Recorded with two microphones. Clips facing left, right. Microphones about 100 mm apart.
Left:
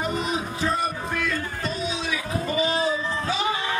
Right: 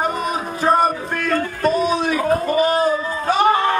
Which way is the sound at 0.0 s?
50° right (ahead or behind).